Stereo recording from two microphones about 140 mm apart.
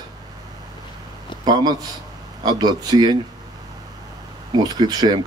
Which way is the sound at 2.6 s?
30° right (ahead or behind).